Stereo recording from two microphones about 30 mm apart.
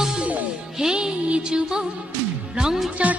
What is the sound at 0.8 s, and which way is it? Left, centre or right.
Music, right.